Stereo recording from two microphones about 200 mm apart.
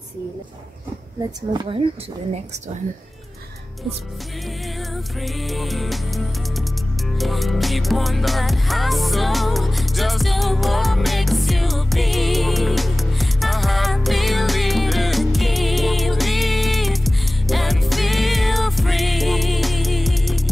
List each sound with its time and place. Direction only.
1.5 s speech: 20° right (ahead or behind)
5.2 s music: centre (ahead or behind)